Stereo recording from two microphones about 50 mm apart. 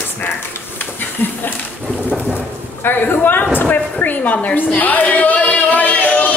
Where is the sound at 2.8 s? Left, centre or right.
Left.